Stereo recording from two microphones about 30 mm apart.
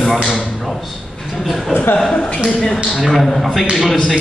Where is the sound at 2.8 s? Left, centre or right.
Centre.